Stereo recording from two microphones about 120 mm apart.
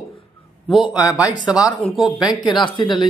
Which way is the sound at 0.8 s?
30° left (ahead or behind).